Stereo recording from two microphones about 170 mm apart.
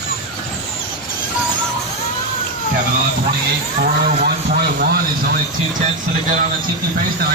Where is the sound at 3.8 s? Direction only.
60° right (ahead or behind).